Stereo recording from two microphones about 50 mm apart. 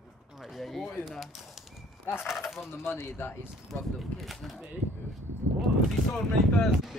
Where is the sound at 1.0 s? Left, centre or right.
Centre.